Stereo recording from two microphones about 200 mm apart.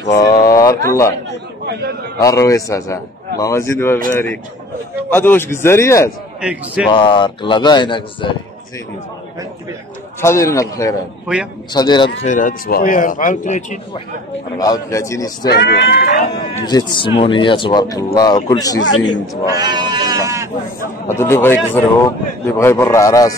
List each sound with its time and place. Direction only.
0.0 s speech: 20° left (ahead or behind)
1.3 s a man's voice: 55° right (ahead or behind)
2.2 s a man's voice: 15° left (ahead or behind)
6.4 s a man's voice: 5° right (ahead or behind)
6.9 s speech: 25° left (ahead or behind)
10.2 s a man's voice: 15° left (ahead or behind)
12.2 s speech: 40° left (ahead or behind)
14.6 s a man's voice: 15° left (ahead or behind)
15.4 s speech: 55° left (ahead or behind)
16.6 s speech: 25° left (ahead or behind)
19.6 s speech: 20° right (ahead or behind)
21.1 s a man's voice: 10° left (ahead or behind)